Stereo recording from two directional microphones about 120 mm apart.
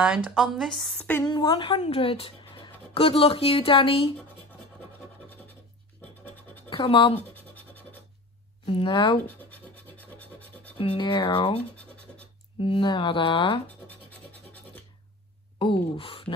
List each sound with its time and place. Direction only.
0.0 s speech: 5° right (ahead or behind)
1.2 s speech: 35° left (ahead or behind)
1.8 s speech: 55° left (ahead or behind)
6.2 s scratch: 15° left (ahead or behind)
6.7 s speech: 45° left (ahead or behind)
7.2 s scratch: 15° left (ahead or behind)
8.6 s speech: 45° left (ahead or behind)
9.2 s scratch: 15° left (ahead or behind)
10.8 s speech: 45° left (ahead or behind)
11.7 s scratch: 10° left (ahead or behind)
12.5 s speech: 45° left (ahead or behind)
13.8 s scratch: 15° left (ahead or behind)
15.6 s speech: 50° left (ahead or behind)